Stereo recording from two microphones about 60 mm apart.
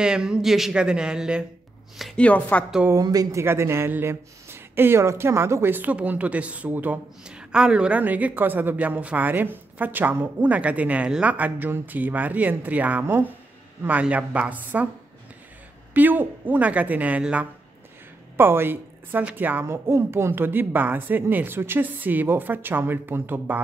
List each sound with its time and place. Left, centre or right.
0.0 s speech: centre
2.1 s chopping: left
3.0 s speech: right
3.4 s speech: right
5.9 s speech: right
7.2 s a woman's voice: centre
8.0 s a woman's voice: right
10.6 s speech: right
15.9 s speech: right
18.3 s a woman's voice: right
19.6 s a woman's voice: right